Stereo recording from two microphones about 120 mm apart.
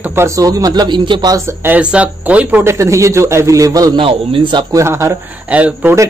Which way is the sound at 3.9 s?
45° right (ahead or behind).